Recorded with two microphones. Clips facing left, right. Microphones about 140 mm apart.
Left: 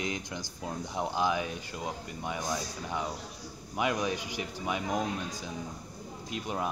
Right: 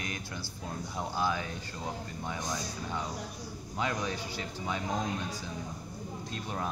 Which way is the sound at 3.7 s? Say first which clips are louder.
Left 3 dB; 15° left (ahead or behind).